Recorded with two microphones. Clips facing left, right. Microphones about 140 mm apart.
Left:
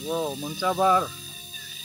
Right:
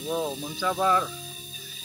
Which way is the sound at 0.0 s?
5° left (ahead or behind).